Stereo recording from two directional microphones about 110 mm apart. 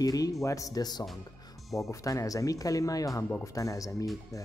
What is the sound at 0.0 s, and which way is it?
Speech, 35° left (ahead or behind).